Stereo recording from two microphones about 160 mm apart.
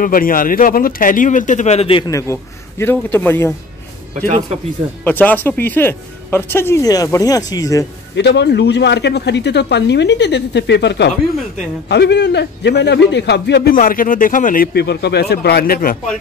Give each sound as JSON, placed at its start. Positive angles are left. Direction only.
{"t": 0.0, "sound": "speech", "side_deg": 60}
{"t": 2.0, "sound": "a man's voice", "side_deg": 20}
{"t": 5.0, "sound": "a man's voice", "side_deg": 10}
{"t": 8.2, "sound": "a man's voice", "side_deg": 90}